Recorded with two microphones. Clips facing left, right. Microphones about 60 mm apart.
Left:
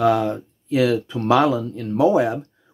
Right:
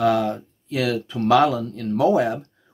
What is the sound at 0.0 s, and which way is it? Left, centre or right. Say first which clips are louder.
Speech: left 1 dB; left.